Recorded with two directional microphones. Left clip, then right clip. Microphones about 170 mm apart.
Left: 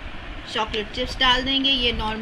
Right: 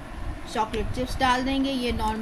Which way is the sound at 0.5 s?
70° right (ahead or behind).